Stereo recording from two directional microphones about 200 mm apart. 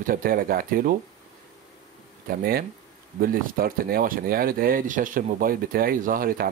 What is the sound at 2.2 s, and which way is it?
Speech, 50° right (ahead or behind).